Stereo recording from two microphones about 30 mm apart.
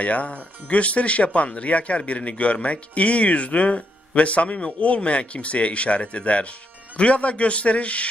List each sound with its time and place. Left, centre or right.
0.0 s speech: left
4.6 s speech: left
4.8 s speech: left